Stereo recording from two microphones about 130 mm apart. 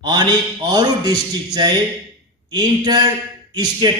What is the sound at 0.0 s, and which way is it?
A man's voice, 35° right (ahead or behind).